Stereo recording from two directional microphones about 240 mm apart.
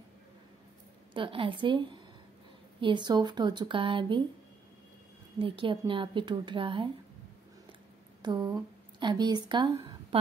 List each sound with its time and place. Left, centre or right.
1.1 s a woman's voice: right
5.4 s a woman's voice: right
8.2 s speech: centre